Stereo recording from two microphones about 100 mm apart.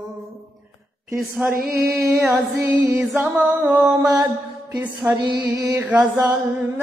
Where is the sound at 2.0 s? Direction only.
25° right (ahead or behind).